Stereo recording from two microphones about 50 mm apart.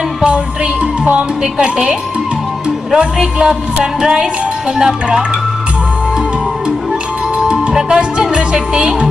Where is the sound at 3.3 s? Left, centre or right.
Centre.